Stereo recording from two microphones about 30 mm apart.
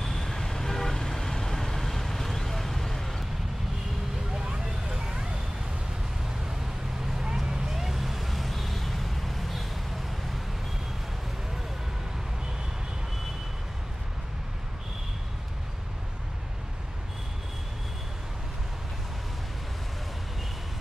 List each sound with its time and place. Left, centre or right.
0.0 s vehicle: centre
4.3 s vehicle: right
7.2 s vehicle: right
7.7 s vehicle: centre